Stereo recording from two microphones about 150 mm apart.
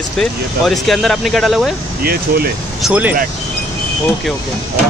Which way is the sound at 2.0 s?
90° right.